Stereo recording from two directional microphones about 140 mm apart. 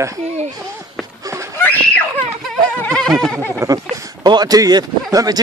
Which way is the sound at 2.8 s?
5° left (ahead or behind).